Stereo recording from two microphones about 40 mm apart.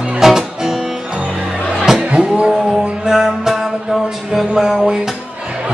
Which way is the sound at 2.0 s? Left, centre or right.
Right.